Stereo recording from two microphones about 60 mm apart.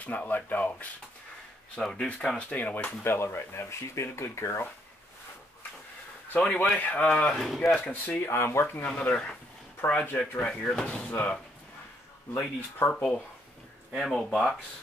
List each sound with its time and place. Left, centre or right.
0.0 s speech: left
1.8 s speech: centre; by 2.9 s left
3.0 s speech: left
6.6 s speech: left
7.2 s speech: centre
7.4 s speech: centre
7.8 s speech: left
8.8 s speech: left
11.1 s speech: left
12.4 s speech: left
12.9 s speech: centre